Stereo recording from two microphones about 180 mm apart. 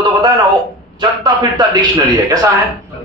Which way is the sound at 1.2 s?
25° right (ahead or behind).